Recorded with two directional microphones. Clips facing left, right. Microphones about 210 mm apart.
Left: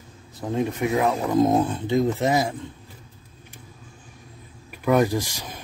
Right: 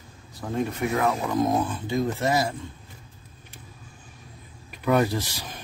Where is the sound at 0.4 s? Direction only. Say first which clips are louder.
Left 3 dB; 20° left (ahead or behind).